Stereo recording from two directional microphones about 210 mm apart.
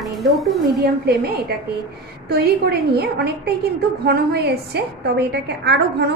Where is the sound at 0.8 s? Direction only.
50° right (ahead or behind).